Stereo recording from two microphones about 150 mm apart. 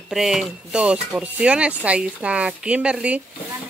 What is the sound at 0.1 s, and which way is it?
Speech, centre (ahead or behind).